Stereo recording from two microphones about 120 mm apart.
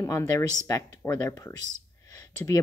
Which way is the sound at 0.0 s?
30° left (ahead or behind).